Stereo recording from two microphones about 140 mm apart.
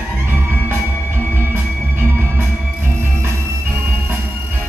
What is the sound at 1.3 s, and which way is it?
Music, 15° right (ahead or behind).